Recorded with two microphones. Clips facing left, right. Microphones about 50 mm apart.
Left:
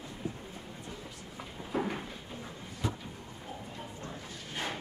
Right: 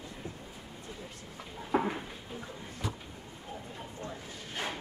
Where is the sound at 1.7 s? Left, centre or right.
Right.